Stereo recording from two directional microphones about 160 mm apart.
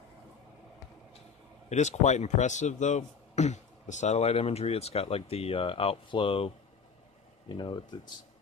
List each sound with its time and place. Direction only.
1.7 s a man's voice: 45° left (ahead or behind); by 8.1 s 25° left (ahead or behind)